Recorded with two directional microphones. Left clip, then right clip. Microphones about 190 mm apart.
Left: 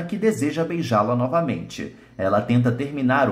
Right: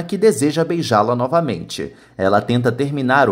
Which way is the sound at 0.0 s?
40° right (ahead or behind).